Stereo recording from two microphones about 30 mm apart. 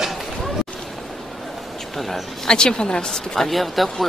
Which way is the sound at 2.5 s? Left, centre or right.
Left.